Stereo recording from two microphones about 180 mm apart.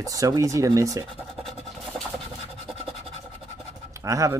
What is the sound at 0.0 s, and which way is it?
Speech, 20° right (ahead or behind).